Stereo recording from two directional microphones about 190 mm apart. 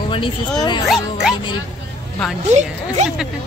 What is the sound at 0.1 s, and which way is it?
Speech, 25° left (ahead or behind).